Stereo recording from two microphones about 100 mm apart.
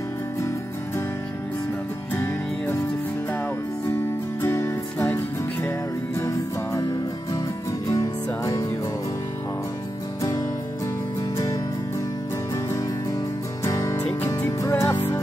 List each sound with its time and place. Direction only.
2.1 s music: 30° left (ahead or behind)
4.4 s music: 25° left (ahead or behind)
7.9 s music: 35° left (ahead or behind)
13.7 s music: 35° left (ahead or behind)